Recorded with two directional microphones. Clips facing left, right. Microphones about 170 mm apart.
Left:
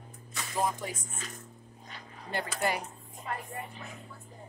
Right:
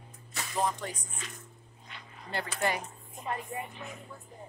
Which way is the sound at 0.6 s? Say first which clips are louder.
Even; 10° left (ahead or behind).